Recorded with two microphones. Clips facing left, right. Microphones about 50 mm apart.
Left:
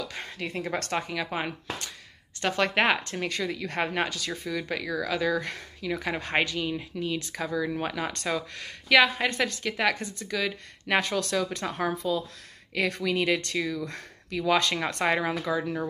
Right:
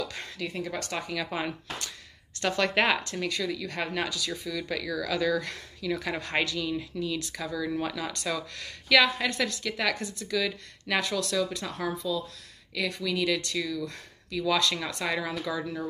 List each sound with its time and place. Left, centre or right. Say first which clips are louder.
0.4 s speech: left 2 dB; left
1.0 s speech: left 1 dB; centre; by 8.3 s left
8.3 s speech: left 2 dB; left
14.9 s speech: left 5 dB; left